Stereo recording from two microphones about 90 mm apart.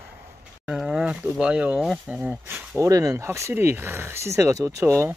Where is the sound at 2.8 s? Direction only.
40° right (ahead or behind).